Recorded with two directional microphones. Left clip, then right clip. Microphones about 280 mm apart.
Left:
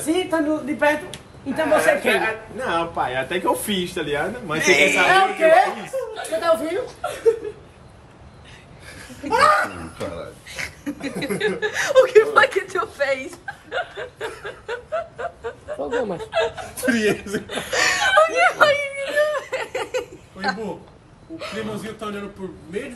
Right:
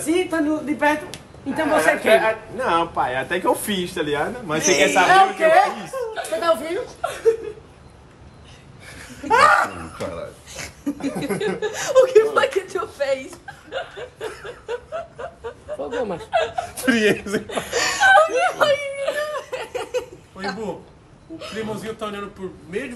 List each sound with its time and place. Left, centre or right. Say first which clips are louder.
0.0 s speech: even; centre
4.6 s a man's voice: left 1 dB; centre
5.1 s speech: right 1 dB; centre
8.8 s laughter: right 5 dB; centre
9.9 s speech: even; centre
10.5 s a sound: left 1 dB; centre
11.3 s chuckle: left 5 dB; centre
15.9 s speech: left 2 dB; centre
16.3 s speech: right 1 dB; right
17.6 s speech: right 3 dB; centre
19.2 s a sound: left 4 dB; centre
21.4 s speech: even; centre